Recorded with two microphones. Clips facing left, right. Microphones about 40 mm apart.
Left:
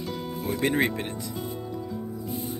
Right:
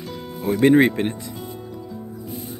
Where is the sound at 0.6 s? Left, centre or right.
Right.